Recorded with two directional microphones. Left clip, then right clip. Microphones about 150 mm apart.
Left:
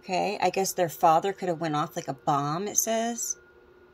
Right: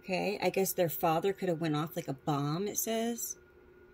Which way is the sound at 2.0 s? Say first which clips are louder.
Left 8 dB; 50° left (ahead or behind).